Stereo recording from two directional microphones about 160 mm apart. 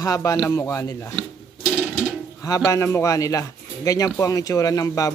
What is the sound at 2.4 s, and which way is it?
Speech, 20° left (ahead or behind).